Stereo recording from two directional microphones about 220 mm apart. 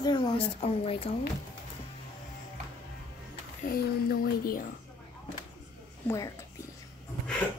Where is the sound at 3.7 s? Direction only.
40° left (ahead or behind).